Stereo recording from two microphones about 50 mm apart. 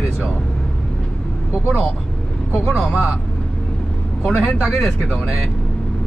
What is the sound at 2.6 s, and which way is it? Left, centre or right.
Speech, centre.